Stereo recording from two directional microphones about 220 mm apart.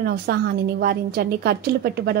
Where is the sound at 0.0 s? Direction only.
45° right (ahead or behind).